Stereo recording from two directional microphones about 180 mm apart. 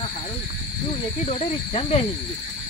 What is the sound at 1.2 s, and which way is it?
Speech, 35° left (ahead or behind).